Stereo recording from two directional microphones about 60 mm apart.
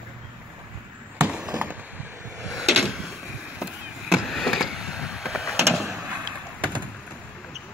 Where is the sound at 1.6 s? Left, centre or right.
Right.